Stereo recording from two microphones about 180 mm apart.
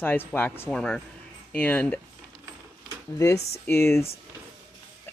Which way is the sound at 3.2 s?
15° left (ahead or behind).